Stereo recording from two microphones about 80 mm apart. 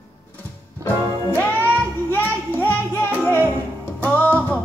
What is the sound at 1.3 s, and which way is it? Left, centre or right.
Music, left.